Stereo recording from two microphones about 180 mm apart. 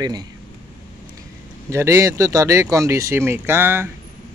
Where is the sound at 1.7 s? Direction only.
15° right (ahead or behind).